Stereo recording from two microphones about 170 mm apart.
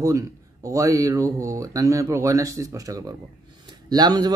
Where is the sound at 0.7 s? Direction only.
20° right (ahead or behind).